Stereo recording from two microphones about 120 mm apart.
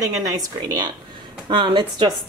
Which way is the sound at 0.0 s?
30° right (ahead or behind).